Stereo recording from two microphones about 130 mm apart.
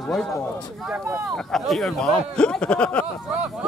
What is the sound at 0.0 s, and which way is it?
Speech, 5° left (ahead or behind).